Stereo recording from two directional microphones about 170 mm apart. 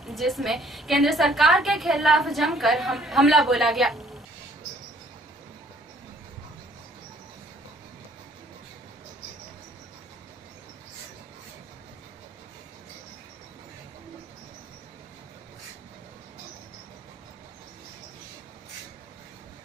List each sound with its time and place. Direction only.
0.0 s a woman's voice: centre (ahead or behind)